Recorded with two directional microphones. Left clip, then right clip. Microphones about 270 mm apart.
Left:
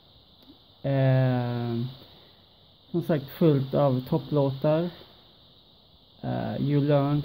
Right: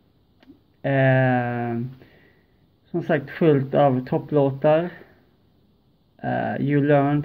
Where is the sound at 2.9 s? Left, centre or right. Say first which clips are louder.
Right 4 dB; centre.